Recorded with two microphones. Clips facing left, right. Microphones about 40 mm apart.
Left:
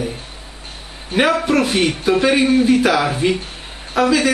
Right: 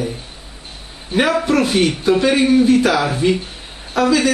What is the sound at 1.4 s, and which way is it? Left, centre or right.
A man's voice, centre.